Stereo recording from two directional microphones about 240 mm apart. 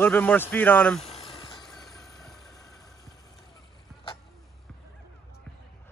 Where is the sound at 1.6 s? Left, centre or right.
Centre.